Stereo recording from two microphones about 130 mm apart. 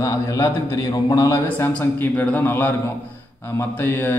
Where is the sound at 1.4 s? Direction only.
15° left (ahead or behind).